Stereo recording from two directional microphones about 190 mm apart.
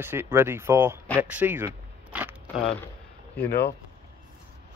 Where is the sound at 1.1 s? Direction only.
10° right (ahead or behind).